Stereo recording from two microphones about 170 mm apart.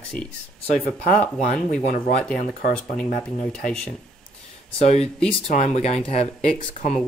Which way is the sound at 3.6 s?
5° left (ahead or behind).